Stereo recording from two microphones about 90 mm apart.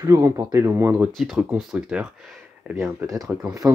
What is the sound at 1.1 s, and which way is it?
Speech, centre (ahead or behind).